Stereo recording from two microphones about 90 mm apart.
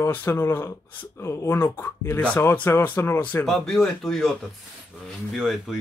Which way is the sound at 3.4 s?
5° left (ahead or behind).